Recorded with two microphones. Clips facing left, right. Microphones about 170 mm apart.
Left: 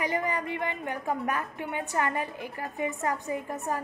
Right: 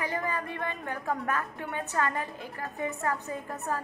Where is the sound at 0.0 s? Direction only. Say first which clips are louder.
Left 3 dB; 15° left (ahead or behind).